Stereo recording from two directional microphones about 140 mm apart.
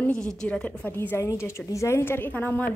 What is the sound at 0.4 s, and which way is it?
A woman's voice, 10° left (ahead or behind).